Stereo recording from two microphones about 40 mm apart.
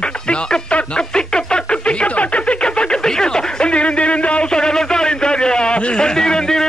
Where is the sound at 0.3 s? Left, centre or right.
Left.